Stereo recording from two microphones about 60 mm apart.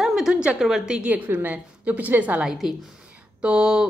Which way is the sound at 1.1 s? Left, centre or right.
Right.